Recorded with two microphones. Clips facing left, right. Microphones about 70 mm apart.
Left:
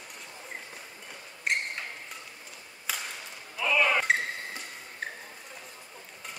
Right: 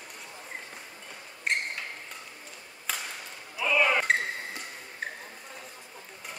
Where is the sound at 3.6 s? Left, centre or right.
Centre.